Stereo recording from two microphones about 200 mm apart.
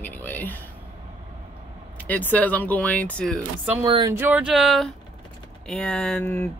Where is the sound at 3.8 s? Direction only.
25° right (ahead or behind).